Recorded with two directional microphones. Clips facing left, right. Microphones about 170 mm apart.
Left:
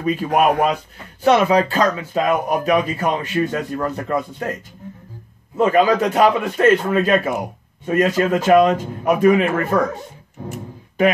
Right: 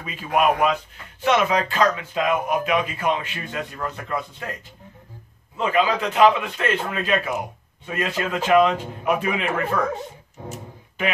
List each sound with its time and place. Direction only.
0.0 s a man's voice: 45° left (ahead or behind)
5.6 s a man's voice: 45° left (ahead or behind)